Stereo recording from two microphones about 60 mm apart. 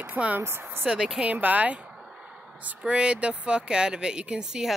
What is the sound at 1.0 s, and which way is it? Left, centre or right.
Speech, centre.